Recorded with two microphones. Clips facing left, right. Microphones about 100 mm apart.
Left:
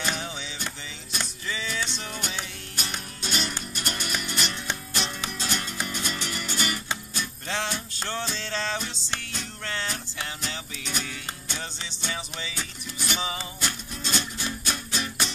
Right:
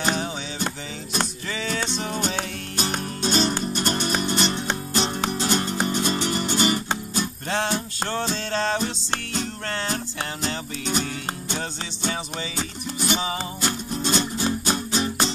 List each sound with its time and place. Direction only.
0.0 s music: 30° right (ahead or behind)
1.5 s music: 55° right (ahead or behind)
3.2 s music: 35° right (ahead or behind)
7.4 s music: 50° right (ahead or behind)
9.7 s music: 45° right (ahead or behind)
10.8 s music: 30° right (ahead or behind)